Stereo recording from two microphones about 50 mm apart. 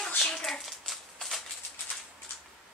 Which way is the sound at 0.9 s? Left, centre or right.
Centre.